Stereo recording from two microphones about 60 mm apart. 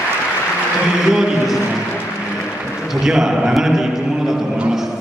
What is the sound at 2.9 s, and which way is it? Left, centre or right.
A man's voice, centre.